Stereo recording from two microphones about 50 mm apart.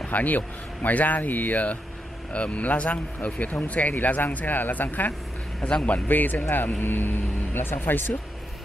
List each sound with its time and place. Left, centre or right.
0.0 s speech: left
5.6 s speech: left
6.0 s speech: left